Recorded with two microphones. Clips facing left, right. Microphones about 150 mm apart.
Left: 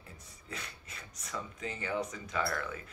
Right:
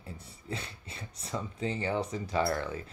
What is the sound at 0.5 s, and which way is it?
Speech, 30° right (ahead or behind).